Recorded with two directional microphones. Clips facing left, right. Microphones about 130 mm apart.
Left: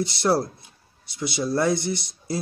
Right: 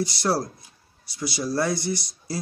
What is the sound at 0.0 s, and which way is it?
Speech, 25° left (ahead or behind).